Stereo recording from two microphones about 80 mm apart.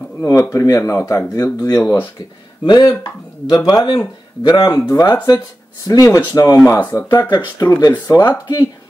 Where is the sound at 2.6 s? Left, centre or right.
Left.